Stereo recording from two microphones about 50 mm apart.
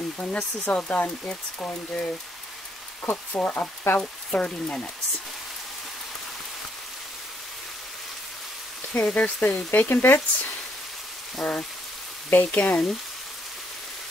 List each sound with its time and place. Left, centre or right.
0.2 s speech: left
0.8 s speech: left
3.1 s speech: left
3.5 s speech: left
4.0 s speech: centre
8.9 s speech: left
11.4 s speech: centre
12.3 s speech: left
12.5 s speech: centre